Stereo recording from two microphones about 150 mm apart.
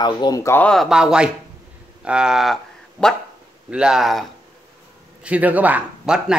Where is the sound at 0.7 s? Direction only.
Centre (ahead or behind).